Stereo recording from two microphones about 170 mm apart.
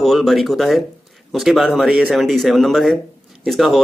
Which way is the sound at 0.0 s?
Centre (ahead or behind).